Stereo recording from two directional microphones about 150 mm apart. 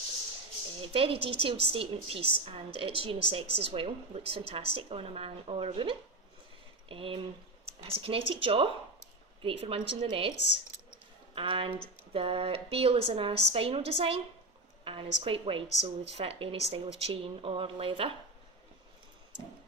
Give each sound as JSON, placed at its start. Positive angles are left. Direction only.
{"t": 0.7, "sound": "a woman's voice", "side_deg": -35}
{"t": 11.3, "sound": "a woman's voice", "side_deg": -35}